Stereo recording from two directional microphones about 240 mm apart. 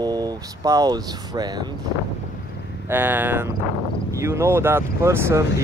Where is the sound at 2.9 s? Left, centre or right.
Centre.